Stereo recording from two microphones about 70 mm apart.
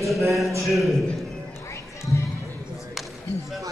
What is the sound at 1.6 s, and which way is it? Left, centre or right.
Run, left.